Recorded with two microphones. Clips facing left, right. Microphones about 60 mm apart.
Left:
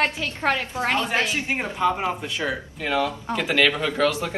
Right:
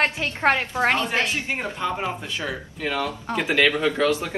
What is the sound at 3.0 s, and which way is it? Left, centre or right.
Speech, right.